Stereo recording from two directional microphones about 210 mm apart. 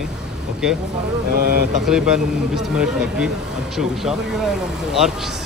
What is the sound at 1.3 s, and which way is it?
Speech, 45° right (ahead or behind).